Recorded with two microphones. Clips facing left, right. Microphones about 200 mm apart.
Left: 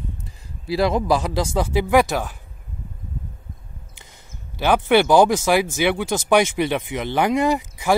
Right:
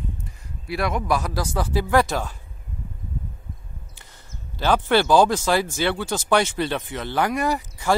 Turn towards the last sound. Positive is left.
turn(degrees=15)  # may be behind; listen again after turning